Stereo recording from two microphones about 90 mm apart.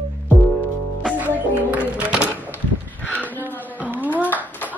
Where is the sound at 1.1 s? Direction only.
20° right (ahead or behind).